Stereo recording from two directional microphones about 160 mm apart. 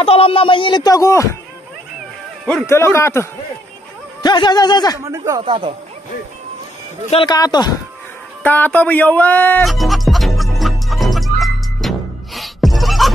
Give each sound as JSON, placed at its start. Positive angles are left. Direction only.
{"t": 0.0, "sound": "speech", "side_deg": 35}
{"t": 2.6, "sound": "a man's voice", "side_deg": 15}
{"t": 4.2, "sound": "speech", "side_deg": 25}
{"t": 5.1, "sound": "speech", "side_deg": -20}
{"t": 5.4, "sound": "speech", "side_deg": -35}
{"t": 7.1, "sound": "speech", "side_deg": 30}
{"t": 8.4, "sound": "a man's voice", "side_deg": 10}
{"t": 9.7, "sound": "music", "side_deg": 0}